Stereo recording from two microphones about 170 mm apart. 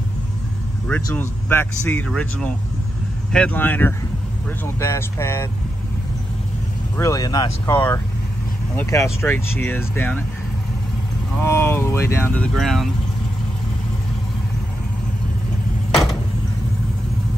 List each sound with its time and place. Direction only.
1.1 s speech: 10° left (ahead or behind)
7.0 s speech: 20° left (ahead or behind)
11.3 s speech: 15° left (ahead or behind)